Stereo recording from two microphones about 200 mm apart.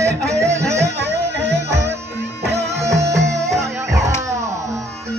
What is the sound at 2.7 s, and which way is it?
Music, 15° right (ahead or behind).